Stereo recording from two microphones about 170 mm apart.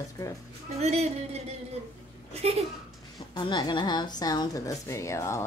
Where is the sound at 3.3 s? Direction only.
25° left (ahead or behind).